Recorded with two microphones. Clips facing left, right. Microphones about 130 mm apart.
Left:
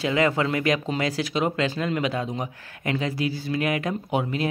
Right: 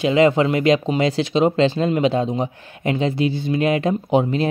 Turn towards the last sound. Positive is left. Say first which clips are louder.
# right 7 dB
turn(degrees=-25)  # may be behind; listen again after turning